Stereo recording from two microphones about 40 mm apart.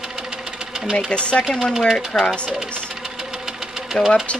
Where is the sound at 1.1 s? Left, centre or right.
Left.